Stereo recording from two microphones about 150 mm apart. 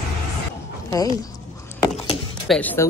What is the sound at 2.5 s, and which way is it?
Speech, 10° left (ahead or behind).